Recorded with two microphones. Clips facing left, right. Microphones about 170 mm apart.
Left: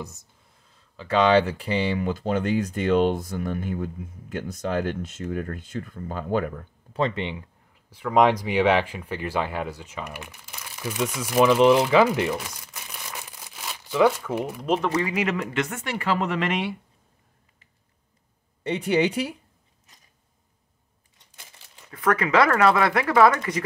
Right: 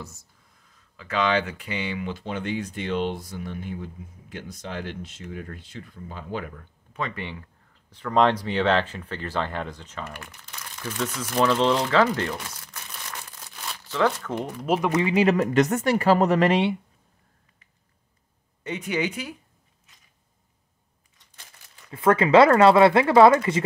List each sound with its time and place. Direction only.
0.7 s speech: 30° left (ahead or behind)
7.0 s speech: 25° left (ahead or behind); by 14.7 s 10° left (ahead or behind)
15.0 s speech: 30° right (ahead or behind)
15.3 s speech: 40° right (ahead or behind)
18.6 s speech: 30° left (ahead or behind)
21.9 s speech: 25° right (ahead or behind)